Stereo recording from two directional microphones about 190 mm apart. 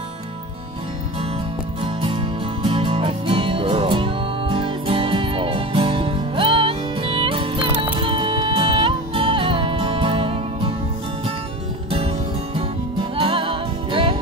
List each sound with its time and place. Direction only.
1.8 s music: 30° right (ahead or behind)
11.9 s music: 30° right (ahead or behind)